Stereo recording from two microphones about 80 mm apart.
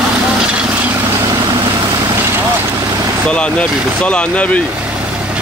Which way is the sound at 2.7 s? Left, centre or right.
Right.